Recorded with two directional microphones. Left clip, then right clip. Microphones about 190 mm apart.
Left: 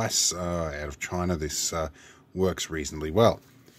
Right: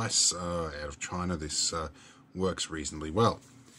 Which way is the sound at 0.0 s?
35° left (ahead or behind).